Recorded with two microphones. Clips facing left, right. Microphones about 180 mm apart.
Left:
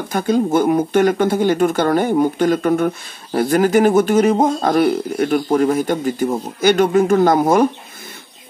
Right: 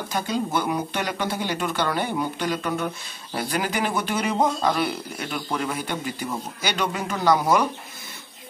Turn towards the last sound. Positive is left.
turn(degrees=50)  # may be behind; listen again after turning